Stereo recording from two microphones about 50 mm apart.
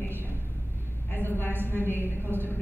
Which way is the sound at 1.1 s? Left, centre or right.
Left.